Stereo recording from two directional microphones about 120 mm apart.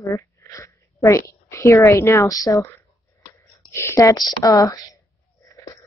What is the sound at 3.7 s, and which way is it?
Speech, 20° left (ahead or behind).